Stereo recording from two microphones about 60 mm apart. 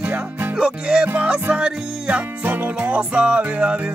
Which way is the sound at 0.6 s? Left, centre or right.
Centre.